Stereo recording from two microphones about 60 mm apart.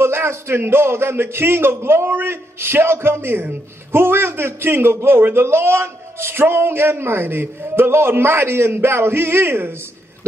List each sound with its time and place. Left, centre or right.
0.0 s a man's voice: right